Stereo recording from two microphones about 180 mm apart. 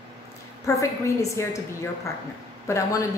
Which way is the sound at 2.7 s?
15° left (ahead or behind).